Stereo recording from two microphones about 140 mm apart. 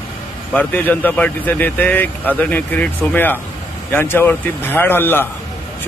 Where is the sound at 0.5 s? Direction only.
10° left (ahead or behind).